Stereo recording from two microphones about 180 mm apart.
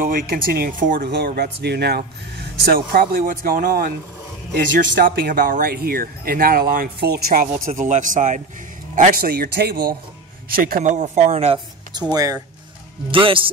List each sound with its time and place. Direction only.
0.0 s speech: 55° right (ahead or behind)
1.1 s speech: 60° right (ahead or behind)
8.9 s speech: 55° right (ahead or behind); by 12.0 s 30° right (ahead or behind)
12.1 s speech: 20° right (ahead or behind)
13.1 s speech: 30° right (ahead or behind)